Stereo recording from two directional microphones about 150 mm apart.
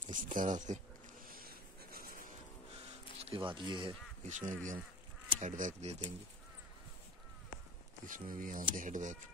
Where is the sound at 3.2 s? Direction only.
35° right (ahead or behind).